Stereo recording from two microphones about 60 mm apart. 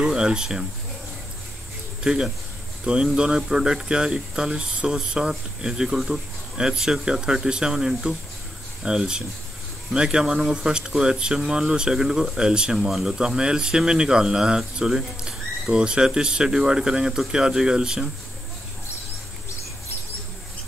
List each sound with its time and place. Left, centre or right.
0.0 s speech: centre
2.8 s speech: centre